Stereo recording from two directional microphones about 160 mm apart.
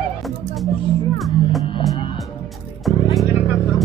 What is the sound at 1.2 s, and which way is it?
Music, centre (ahead or behind).